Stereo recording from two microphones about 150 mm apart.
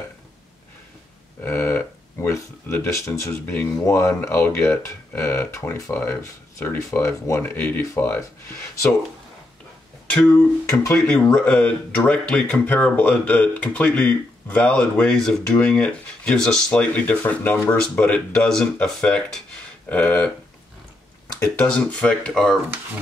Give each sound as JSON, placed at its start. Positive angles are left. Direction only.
{"t": 1.4, "sound": "speech", "side_deg": 15}
{"t": 10.1, "sound": "speech", "side_deg": 10}
{"t": 10.7, "sound": "speech", "side_deg": 20}
{"t": 11.1, "sound": "speech", "side_deg": 5}
{"t": 21.6, "sound": "speech", "side_deg": 5}